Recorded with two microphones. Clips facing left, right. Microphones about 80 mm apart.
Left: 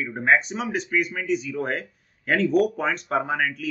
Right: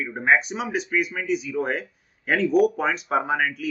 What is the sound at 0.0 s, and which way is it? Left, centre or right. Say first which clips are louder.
Speech: even; centre.